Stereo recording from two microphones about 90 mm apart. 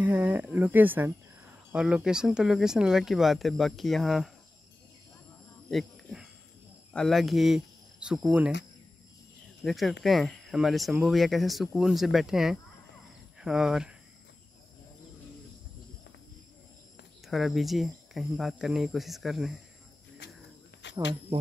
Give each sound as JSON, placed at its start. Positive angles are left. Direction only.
{"t": 0.0, "sound": "speech", "side_deg": -20}
{"t": 1.7, "sound": "speech", "side_deg": -10}
{"t": 5.7, "sound": "speech", "side_deg": 0}
{"t": 9.6, "sound": "speech", "side_deg": 0}
{"t": 17.3, "sound": "speech", "side_deg": 0}